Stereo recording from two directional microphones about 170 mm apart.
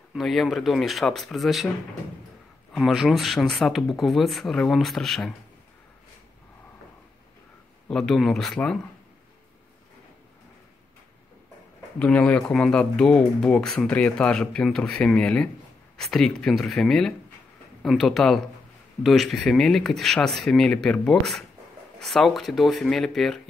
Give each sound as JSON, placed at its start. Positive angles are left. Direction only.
{"t": 0.1, "sound": "speech", "side_deg": 0}
{"t": 2.7, "sound": "speech", "side_deg": 0}
{"t": 7.9, "sound": "speech", "side_deg": 0}
{"t": 12.0, "sound": "speech", "side_deg": 5}